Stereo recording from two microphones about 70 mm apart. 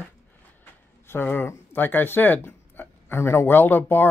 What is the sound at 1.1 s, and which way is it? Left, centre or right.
Speech, left.